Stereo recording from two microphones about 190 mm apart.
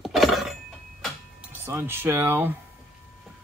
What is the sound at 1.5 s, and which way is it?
Speech, 10° right (ahead or behind).